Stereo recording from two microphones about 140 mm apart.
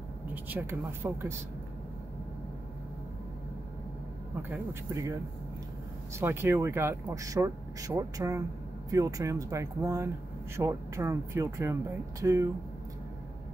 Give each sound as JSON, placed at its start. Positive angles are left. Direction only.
{"t": 0.3, "sound": "speech", "side_deg": -15}
{"t": 4.4, "sound": "speech", "side_deg": -15}